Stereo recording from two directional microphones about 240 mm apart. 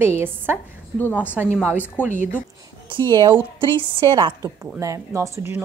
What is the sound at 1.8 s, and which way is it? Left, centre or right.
Speech, centre.